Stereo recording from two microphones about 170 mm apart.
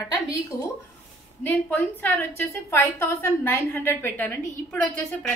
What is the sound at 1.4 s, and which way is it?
A woman's voice, 10° left (ahead or behind).